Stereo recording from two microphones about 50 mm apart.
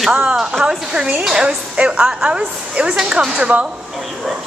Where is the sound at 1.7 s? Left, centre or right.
Centre.